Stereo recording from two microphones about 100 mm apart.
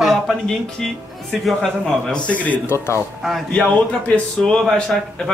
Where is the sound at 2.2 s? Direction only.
15° left (ahead or behind).